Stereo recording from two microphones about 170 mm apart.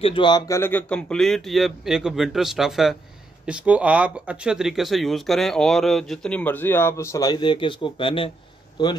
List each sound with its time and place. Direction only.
0.0 s speech: 30° left (ahead or behind)
0.6 s speech: 10° left (ahead or behind); by 8.3 s 30° left (ahead or behind)